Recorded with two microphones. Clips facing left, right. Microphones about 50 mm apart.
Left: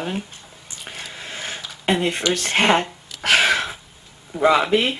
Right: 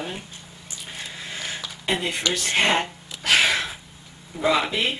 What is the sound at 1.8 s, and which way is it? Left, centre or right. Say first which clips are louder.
Speech: left 5 dB; left.